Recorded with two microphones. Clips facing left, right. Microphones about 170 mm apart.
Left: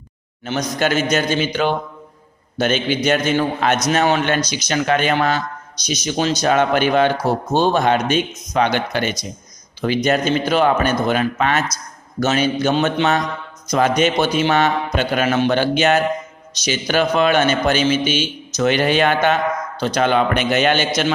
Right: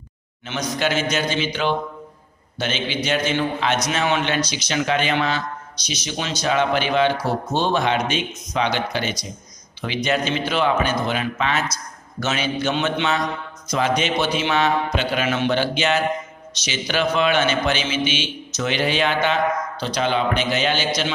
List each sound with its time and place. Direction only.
0.5 s a man's voice: 45° left (ahead or behind)